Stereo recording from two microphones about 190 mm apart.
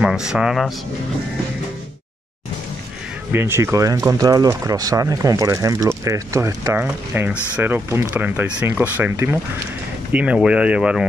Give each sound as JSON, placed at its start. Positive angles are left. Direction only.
{"t": 0.0, "sound": "speech", "side_deg": -5}
{"t": 3.3, "sound": "speech", "side_deg": -10}